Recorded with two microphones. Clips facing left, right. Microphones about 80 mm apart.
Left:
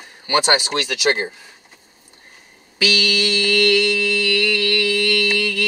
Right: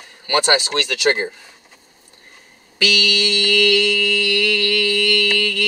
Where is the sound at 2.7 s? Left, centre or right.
Centre.